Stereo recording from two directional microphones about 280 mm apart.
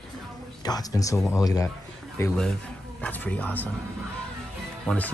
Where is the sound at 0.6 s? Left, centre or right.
Centre.